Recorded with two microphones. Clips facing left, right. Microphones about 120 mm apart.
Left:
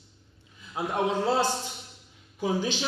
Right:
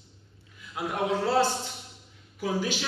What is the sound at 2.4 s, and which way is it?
Speech, 20° left (ahead or behind).